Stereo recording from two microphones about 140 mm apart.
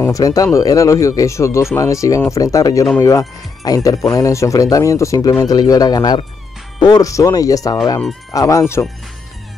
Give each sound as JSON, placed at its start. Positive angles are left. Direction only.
{"t": 0.0, "sound": "speech", "side_deg": 25}